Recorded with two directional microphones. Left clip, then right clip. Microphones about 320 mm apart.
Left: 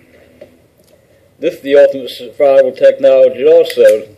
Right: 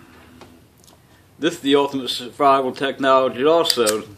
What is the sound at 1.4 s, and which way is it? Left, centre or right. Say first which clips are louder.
A man's voice: left 10 dB; right.